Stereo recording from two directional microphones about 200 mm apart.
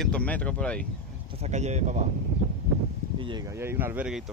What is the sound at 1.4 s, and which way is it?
Speech, 35° right (ahead or behind).